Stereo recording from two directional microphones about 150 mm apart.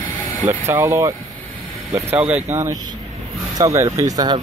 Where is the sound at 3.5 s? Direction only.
20° right (ahead or behind).